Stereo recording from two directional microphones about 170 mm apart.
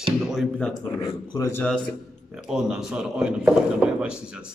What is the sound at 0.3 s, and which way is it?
Speech, centre (ahead or behind).